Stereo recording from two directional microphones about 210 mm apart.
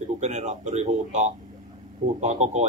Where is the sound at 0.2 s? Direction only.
35° right (ahead or behind).